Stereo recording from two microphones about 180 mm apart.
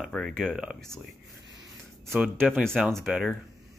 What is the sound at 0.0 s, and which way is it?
Speech, centre (ahead or behind).